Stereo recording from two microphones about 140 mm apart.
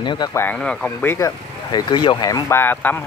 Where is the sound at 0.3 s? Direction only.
15° left (ahead or behind).